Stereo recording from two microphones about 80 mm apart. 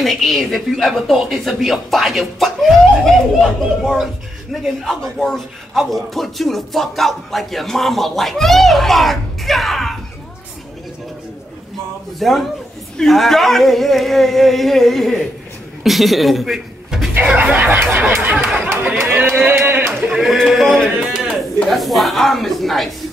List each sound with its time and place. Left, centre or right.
0.0 s speech: centre
12.2 s a man's voice: centre
17.2 s speech: centre
18.2 s a sound: centre
18.9 s speech: right
20.1 s speech: centre